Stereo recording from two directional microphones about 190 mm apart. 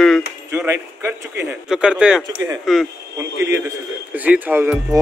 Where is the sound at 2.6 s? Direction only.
Centre (ahead or behind).